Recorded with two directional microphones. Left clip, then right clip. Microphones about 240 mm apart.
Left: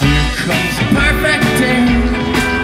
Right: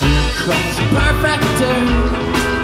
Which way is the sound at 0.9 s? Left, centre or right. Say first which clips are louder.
Left 3 dB; right.